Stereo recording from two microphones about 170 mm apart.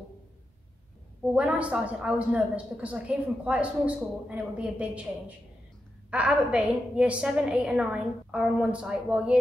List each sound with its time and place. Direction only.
1.2 s a woman's voice: 10° right (ahead or behind)
6.0 s a woman's voice: 10° right (ahead or behind)